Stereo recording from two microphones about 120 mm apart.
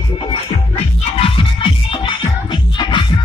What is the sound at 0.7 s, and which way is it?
Music, 55° left (ahead or behind).